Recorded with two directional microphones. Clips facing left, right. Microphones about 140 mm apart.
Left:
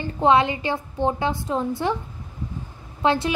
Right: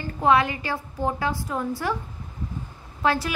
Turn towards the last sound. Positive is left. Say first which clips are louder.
# left 3 dB
turn(degrees=20)  # may be behind; listen again after turning